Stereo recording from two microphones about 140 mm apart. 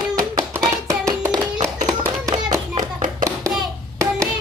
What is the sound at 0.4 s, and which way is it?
Hands, 25° right (ahead or behind).